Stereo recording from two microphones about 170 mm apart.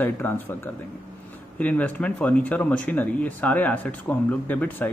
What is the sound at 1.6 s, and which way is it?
Speech, 10° left (ahead or behind).